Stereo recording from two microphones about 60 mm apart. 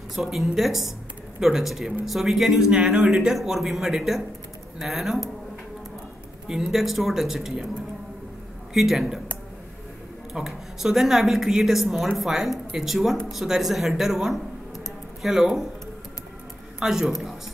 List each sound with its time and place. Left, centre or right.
0.1 s speech: centre
6.4 s speech: centre
8.7 s speech: centre
10.3 s speech: centre
16.8 s a man's voice: centre